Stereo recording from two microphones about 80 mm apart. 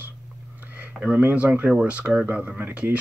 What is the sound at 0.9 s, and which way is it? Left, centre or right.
Speech, right.